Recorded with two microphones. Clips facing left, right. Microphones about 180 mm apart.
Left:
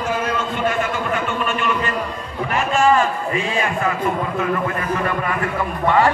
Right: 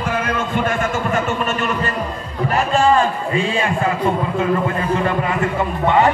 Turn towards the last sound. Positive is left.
turn(degrees=-20)  # may be behind; listen again after turning